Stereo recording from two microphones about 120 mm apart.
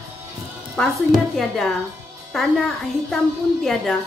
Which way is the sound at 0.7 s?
Centre (ahead or behind).